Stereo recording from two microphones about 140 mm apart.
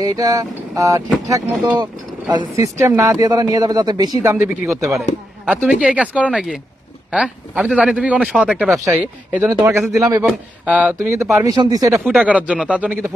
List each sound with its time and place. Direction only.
0.0 s a man's voice: 25° right (ahead or behind)
4.2 s a man's voice: 20° right (ahead or behind)
5.4 s speech: 10° right (ahead or behind)
8.8 s a man's voice: 10° right (ahead or behind)
10.6 s a man's voice: 10° right (ahead or behind); by 12.0 s 25° right (ahead or behind)
12.0 s speech: 5° right (ahead or behind)